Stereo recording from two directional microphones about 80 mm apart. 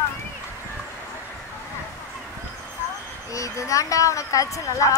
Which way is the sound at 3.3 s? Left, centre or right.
Left.